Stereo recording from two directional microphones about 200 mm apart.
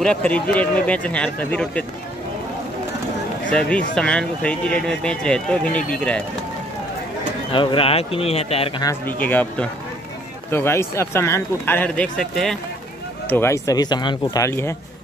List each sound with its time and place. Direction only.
0.0 s speech: 5° left (ahead or behind)
3.5 s speech: 5° left (ahead or behind)
7.5 s speech: 25° left (ahead or behind)
9.0 s speech: 10° left (ahead or behind)